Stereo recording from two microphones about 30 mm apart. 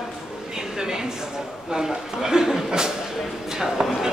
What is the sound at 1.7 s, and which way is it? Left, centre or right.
A man's voice, centre.